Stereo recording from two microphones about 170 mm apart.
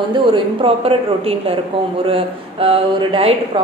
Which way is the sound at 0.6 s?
35° right (ahead or behind).